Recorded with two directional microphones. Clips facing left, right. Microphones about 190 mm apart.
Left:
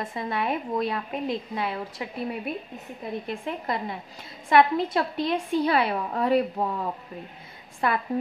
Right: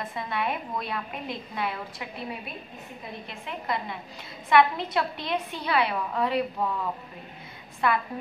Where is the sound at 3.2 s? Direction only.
45° left (ahead or behind).